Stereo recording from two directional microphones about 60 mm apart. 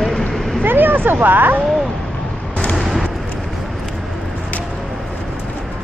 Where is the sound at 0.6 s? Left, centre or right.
Right.